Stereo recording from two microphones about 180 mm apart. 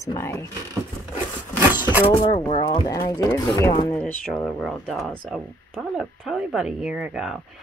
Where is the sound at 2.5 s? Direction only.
25° left (ahead or behind).